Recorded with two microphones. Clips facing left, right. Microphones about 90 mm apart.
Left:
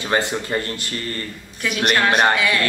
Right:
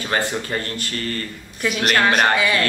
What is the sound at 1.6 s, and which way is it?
Speech, centre (ahead or behind).